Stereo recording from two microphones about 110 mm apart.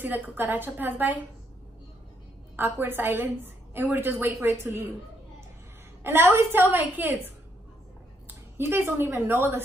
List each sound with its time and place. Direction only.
0.0 s a woman's voice: 20° right (ahead or behind)
2.5 s a woman's voice: 20° right (ahead or behind)
6.0 s a woman's voice: 20° right (ahead or behind)